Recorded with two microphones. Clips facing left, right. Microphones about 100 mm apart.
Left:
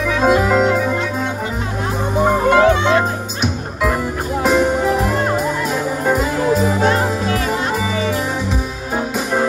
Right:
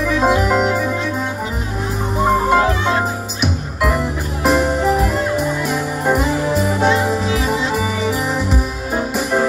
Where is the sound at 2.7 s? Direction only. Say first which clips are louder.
Left 4 dB; 75° left (ahead or behind).